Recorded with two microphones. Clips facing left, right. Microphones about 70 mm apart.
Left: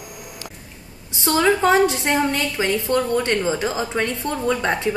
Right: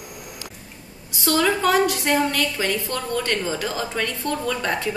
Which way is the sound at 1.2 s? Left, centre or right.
Left.